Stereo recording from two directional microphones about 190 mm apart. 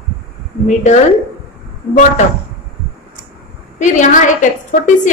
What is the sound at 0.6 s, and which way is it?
Speech, 40° left (ahead or behind).